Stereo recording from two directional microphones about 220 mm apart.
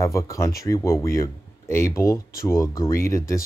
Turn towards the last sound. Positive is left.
turn(degrees=15)  # may be behind; listen again after turning